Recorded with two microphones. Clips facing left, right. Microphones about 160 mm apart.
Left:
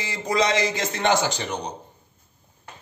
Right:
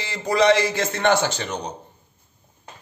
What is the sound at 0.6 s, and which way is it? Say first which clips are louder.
Speech: right 2 dB; 15° left (ahead or behind).